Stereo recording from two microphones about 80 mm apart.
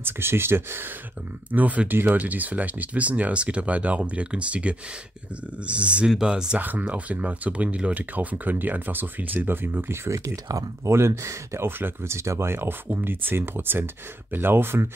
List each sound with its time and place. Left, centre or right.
0.0 s speech: right